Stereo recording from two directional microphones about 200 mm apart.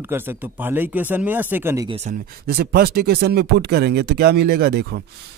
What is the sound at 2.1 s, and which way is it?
Speech, 50° right (ahead or behind).